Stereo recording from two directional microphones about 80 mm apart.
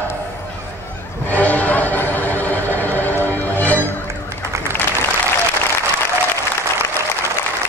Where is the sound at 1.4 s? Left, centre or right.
Centre.